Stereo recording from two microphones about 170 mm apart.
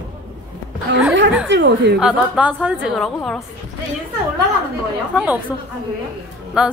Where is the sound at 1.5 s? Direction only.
90° right.